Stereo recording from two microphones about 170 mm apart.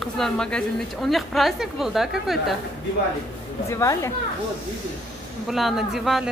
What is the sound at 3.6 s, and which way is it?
Speech, 15° left (ahead or behind).